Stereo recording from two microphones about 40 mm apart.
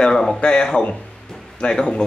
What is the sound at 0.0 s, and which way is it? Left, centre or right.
A man's voice, centre.